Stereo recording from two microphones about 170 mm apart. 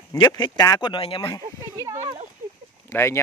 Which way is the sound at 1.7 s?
15° right (ahead or behind).